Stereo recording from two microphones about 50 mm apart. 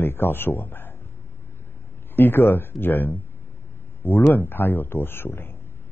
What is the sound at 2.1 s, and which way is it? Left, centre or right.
Speech, left.